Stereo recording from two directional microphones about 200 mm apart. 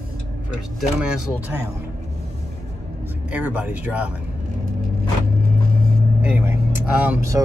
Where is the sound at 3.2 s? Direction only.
5° right (ahead or behind).